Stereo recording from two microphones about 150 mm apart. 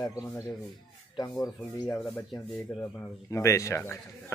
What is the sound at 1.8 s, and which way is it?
Speech, 5° left (ahead or behind).